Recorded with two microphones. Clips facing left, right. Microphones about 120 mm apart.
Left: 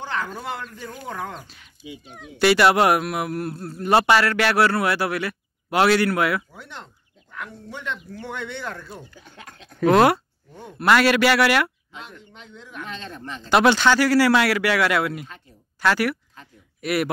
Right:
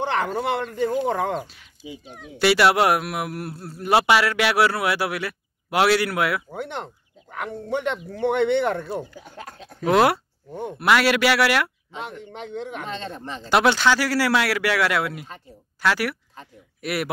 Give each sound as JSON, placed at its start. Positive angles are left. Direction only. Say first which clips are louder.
{"t": 0.0, "sound": "speech", "louder": "right 6 dB", "side_deg": -70}
{"t": 2.0, "sound": "speech", "louder": "left 1 dB", "side_deg": 0}
{"t": 6.5, "sound": "speech", "louder": "right 10 dB", "side_deg": -60}
{"t": 9.1, "sound": "speech", "louder": "right 5 dB", "side_deg": -5}
{"t": 12.2, "sound": "speech", "louder": "right 12 dB", "side_deg": -70}
{"t": 12.8, "sound": "speech", "louder": "right 3 dB", "side_deg": -30}
{"t": 13.5, "sound": "speech", "louder": "left 2 dB", "side_deg": 0}